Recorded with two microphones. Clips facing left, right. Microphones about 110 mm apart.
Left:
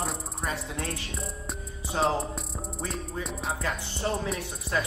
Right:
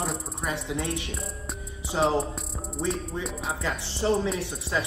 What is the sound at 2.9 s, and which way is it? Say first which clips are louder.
Music: right 2 dB; centre (ahead or behind).